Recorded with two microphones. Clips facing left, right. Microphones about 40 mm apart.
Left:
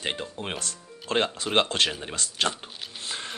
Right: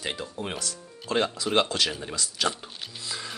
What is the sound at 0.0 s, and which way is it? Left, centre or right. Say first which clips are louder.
Speech: left 1 dB; left.